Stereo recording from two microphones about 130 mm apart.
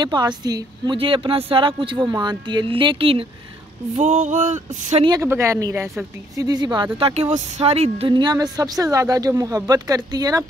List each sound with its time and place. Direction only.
0.0 s speech: 35° right (ahead or behind)
0.9 s speech: 45° right (ahead or behind)
3.9 s a sound: 65° right (ahead or behind)
5.0 s speech: 30° right (ahead or behind)
7.0 s speech: 50° right (ahead or behind)
8.1 s speech: 35° right (ahead or behind)